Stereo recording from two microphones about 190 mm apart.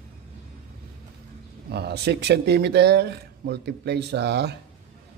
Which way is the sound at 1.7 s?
60° right (ahead or behind).